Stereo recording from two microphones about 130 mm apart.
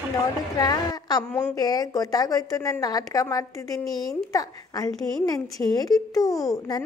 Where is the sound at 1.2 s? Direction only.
15° left (ahead or behind).